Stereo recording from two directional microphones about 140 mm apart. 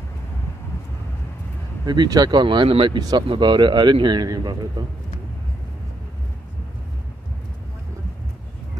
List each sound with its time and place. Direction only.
1.9 s a man's voice: 30° right (ahead or behind)